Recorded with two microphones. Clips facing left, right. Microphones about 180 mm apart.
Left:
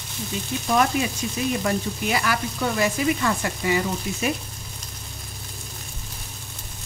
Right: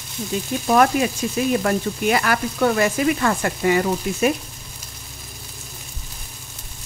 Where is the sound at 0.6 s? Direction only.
60° right (ahead or behind).